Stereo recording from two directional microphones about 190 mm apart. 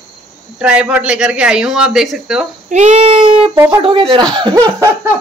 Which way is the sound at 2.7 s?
35° right (ahead or behind).